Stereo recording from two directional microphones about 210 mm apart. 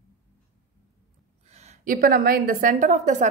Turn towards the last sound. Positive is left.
turn(degrees=-35)  # may be behind; listen again after turning